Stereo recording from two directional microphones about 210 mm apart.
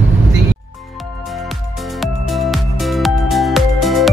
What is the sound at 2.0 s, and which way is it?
Music, centre (ahead or behind).